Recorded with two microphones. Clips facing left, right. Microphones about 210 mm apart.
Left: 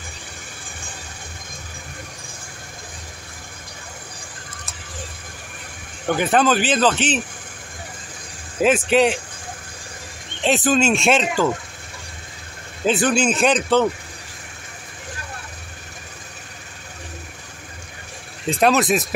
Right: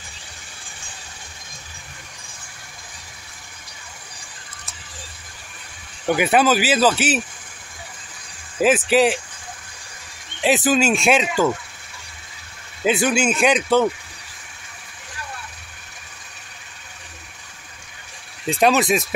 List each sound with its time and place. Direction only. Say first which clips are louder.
6.0 s speech: right 1 dB; 10° right (ahead or behind)
8.5 s speech: even; 5° right (ahead or behind)
10.4 s speech: even; 5° right (ahead or behind)
12.8 s speech: even; 5° right (ahead or behind)
18.6 s speech: even; centre (ahead or behind)